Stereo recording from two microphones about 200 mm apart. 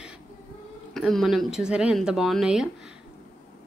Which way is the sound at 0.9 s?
Centre (ahead or behind).